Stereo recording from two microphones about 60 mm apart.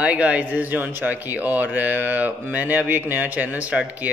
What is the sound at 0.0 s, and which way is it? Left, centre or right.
A man's voice, right.